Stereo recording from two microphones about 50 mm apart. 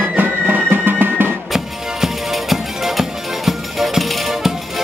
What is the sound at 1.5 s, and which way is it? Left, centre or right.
Music, centre.